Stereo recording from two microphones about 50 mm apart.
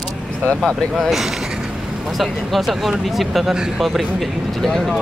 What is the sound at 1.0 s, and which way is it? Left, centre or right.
Speech, centre.